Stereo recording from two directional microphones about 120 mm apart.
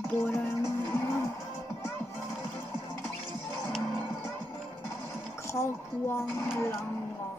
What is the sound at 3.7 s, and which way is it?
Music, centre (ahead or behind).